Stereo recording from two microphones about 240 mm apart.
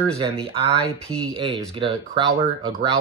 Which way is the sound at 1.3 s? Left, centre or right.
Right.